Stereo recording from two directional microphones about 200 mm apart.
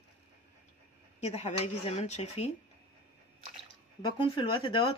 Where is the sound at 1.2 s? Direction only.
35° left (ahead or behind).